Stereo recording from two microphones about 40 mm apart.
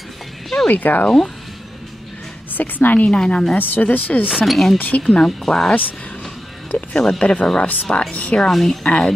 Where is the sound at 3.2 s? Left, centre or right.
Centre.